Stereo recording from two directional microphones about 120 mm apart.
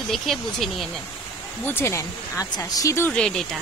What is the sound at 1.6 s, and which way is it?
Speech, 20° left (ahead or behind).